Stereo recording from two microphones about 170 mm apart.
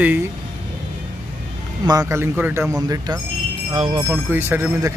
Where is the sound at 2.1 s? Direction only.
15° right (ahead or behind); by 4.0 s 30° right (ahead or behind).